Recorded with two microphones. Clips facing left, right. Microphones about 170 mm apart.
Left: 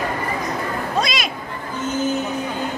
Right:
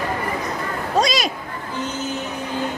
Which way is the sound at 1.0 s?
35° right (ahead or behind).